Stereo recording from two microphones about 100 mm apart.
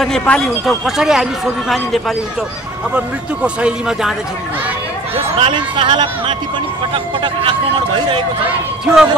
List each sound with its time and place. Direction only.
0.0 s speech: 10° left (ahead or behind)
0.7 s speech: 5° right (ahead or behind)
3.4 s speech: 10° right (ahead or behind)
5.1 s speech: 60° right (ahead or behind)
8.5 s speech: 10° right (ahead or behind)